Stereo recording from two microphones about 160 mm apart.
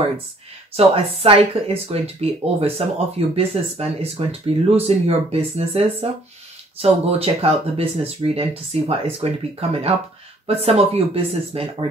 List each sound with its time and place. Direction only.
0.7 s speech: 40° right (ahead or behind)